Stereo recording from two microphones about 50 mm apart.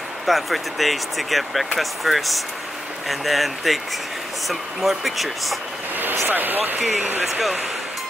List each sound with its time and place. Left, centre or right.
0.3 s speech: centre
6.2 s speech: right
7.2 s speech: centre